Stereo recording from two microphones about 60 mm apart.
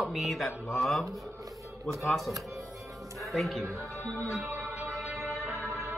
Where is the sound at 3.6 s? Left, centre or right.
Right.